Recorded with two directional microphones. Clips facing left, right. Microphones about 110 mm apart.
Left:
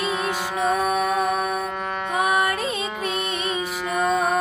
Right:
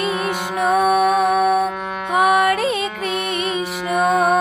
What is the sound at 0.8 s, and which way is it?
Music, 75° right (ahead or behind).